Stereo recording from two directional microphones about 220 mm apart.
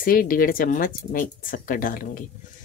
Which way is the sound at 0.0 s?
40° left (ahead or behind).